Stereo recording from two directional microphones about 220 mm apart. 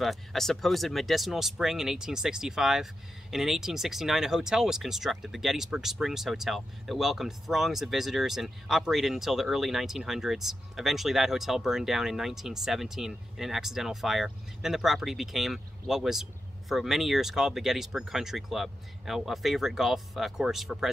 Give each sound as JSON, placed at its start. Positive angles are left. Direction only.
{"t": 0.0, "sound": "speech", "side_deg": 0}